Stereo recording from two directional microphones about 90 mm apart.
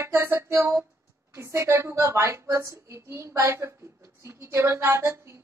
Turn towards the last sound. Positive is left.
turn(degrees=-30)  # may be behind; listen again after turning